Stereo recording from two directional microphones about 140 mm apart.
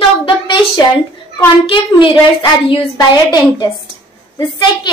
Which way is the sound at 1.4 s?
35° left (ahead or behind).